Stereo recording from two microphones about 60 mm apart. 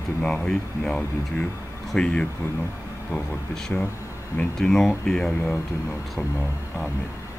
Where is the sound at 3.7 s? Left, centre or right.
Centre.